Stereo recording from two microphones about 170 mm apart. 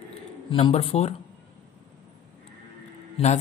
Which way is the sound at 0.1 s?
30° left (ahead or behind).